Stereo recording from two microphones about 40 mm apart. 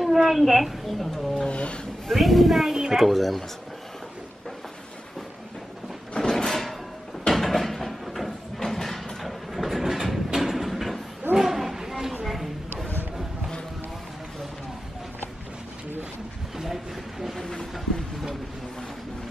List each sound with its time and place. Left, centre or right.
0.0 s a woman's voice: centre
1.4 s speech: left
2.0 s speech: centre
2.7 s speech: centre
3.1 s speech: centre
6.1 s a sound: centre
8.5 s vehicle: centre
11.3 s a sound: centre